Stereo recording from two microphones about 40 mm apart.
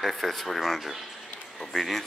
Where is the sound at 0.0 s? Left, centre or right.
Centre.